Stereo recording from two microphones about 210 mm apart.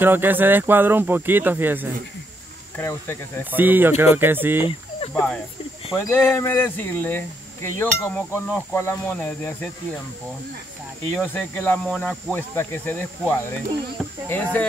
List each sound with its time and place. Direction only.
0.0 s speech: 10° right (ahead or behind)
2.8 s speech: 10° left (ahead or behind)
3.5 s speech: 10° right (ahead or behind)
4.6 s speech: 25° left (ahead or behind)
6.0 s speech: 10° left (ahead or behind)
11.1 s speech: 10° left (ahead or behind)